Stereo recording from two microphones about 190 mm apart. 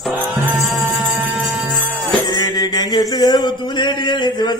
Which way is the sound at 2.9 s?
20° left (ahead or behind).